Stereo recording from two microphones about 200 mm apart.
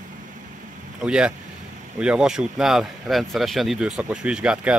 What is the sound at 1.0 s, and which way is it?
Speech, 5° right (ahead or behind).